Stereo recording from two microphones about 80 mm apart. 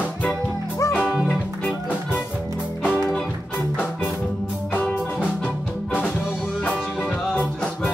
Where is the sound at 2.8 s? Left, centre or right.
Centre.